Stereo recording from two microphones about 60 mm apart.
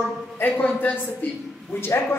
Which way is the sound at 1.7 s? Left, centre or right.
Left.